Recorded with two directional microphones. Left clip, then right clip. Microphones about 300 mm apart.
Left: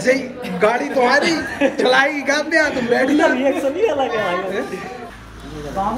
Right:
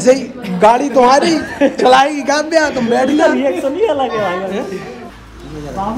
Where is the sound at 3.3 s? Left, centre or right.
Right.